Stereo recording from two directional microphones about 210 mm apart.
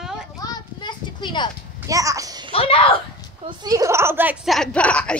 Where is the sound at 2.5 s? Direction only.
25° left (ahead or behind).